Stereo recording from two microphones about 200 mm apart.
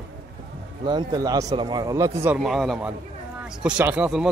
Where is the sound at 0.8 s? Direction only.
20° right (ahead or behind).